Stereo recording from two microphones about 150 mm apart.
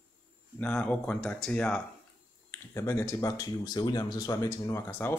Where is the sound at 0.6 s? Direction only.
10° left (ahead or behind).